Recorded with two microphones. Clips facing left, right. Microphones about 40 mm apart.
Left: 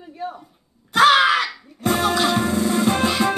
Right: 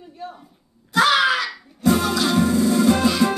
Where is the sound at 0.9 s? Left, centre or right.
Left.